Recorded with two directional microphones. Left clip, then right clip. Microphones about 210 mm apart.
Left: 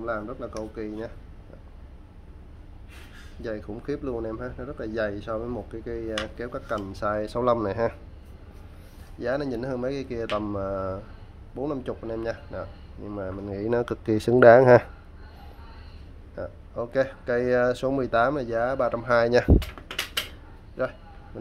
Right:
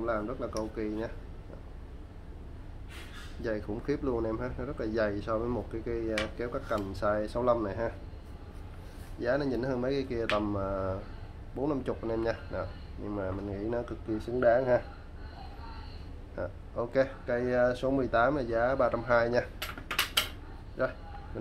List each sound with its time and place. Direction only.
0.0 s speech: 20° left (ahead or behind)
3.4 s speech: 15° left (ahead or behind); by 7.9 s 35° left (ahead or behind)
9.2 s speech: 25° left (ahead or behind)
13.6 s speech: 35° left (ahead or behind)
16.3 s speech: 20° left (ahead or behind); by 19.5 s 35° left (ahead or behind)
20.8 s speech: 30° left (ahead or behind)